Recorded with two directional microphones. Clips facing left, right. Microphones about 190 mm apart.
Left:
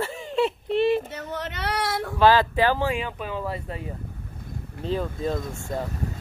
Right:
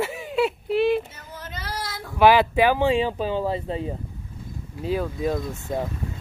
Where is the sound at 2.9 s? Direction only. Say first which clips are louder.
Right 7 dB; 30° right (ahead or behind).